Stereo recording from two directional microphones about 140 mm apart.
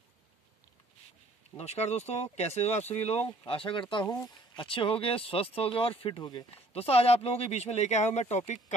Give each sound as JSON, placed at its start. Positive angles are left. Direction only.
{"t": 1.6, "sound": "speech", "side_deg": 50}
{"t": 6.7, "sound": "speech", "side_deg": 45}